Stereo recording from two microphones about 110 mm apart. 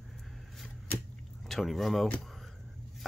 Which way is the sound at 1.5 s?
Centre (ahead or behind).